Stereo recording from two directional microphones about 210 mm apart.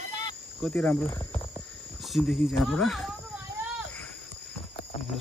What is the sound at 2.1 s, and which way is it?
Speech, centre (ahead or behind).